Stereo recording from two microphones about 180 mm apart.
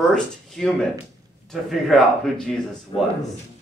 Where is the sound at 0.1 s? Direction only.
5° left (ahead or behind).